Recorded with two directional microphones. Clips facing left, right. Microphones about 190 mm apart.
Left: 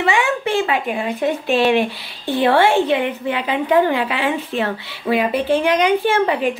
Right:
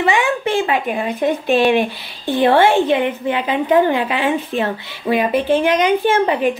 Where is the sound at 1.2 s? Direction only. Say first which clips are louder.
Right 2 dB; 15° right (ahead or behind).